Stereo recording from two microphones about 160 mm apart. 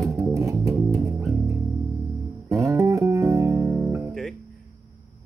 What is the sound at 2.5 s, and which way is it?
Music, 20° right (ahead or behind).